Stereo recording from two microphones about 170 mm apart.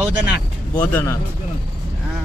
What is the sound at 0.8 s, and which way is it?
Speech, 15° left (ahead or behind).